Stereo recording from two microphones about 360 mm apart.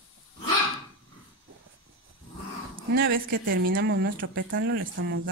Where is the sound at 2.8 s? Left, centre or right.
Right.